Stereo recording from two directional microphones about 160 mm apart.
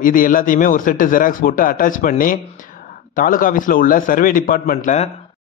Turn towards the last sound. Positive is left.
turn(degrees=50)  # may be behind; listen again after turning